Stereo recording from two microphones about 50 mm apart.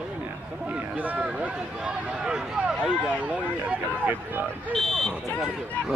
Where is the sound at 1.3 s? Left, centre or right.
Right.